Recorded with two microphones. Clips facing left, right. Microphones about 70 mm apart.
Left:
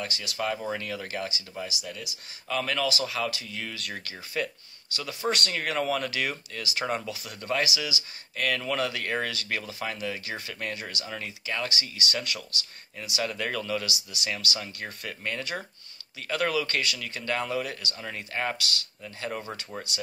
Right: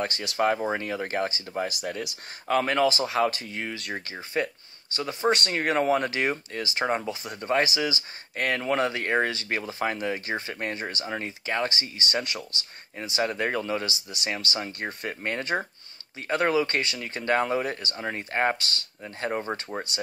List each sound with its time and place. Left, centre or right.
0.0 s speech: right
5.8 s speech: right
14.1 s speech: right
14.8 s speech: right
15.0 s speech: right